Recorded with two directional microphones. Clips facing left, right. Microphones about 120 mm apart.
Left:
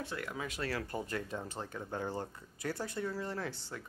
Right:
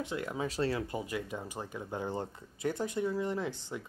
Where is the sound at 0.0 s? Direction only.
20° right (ahead or behind).